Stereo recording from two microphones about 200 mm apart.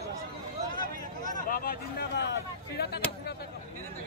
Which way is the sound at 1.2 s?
40° left (ahead or behind).